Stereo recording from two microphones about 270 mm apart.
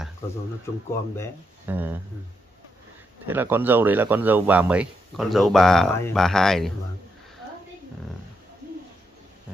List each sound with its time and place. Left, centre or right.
1.7 s speech: centre
3.3 s speech: centre